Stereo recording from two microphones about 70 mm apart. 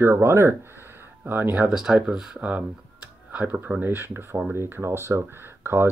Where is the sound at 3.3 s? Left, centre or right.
Right.